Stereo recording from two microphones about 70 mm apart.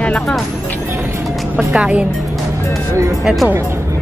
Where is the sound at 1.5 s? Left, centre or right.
Centre.